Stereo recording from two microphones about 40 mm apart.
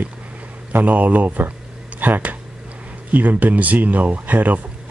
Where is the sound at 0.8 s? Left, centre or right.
Right.